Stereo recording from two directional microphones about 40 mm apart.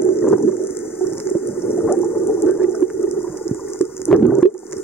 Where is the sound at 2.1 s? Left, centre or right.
Left.